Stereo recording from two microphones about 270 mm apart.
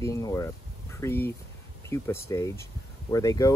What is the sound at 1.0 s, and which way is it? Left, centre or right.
Speech, centre.